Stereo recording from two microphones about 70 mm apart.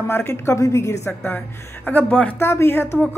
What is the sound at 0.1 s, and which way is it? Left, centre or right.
Speech, left.